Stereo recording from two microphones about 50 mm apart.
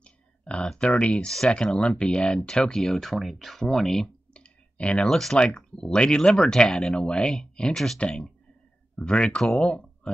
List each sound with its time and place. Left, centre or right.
0.0 s clicking: left
0.7 s speech: left
4.3 s clicking: left
5.0 s speech: centre